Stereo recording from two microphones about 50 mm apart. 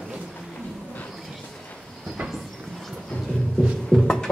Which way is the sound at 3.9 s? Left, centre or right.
Left.